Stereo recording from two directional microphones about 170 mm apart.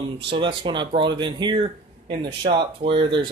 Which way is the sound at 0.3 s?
30° right (ahead or behind).